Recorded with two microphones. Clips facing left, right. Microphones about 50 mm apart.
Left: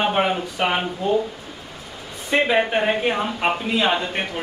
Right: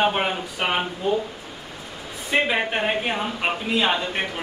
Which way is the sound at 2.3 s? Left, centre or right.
Centre.